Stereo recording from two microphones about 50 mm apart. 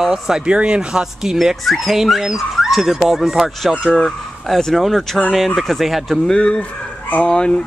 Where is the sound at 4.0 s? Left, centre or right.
Centre.